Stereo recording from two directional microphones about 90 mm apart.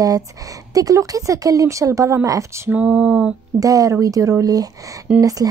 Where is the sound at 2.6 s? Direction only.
15° right (ahead or behind).